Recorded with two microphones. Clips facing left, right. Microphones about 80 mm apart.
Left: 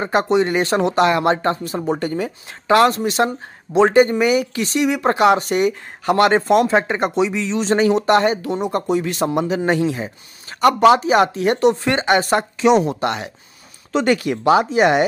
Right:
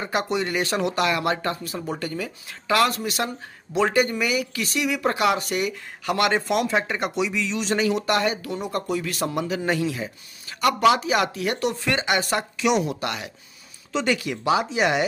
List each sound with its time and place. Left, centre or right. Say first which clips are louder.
0.0 s speech: left 8 dB; left
13.9 s speech: left 7 dB; left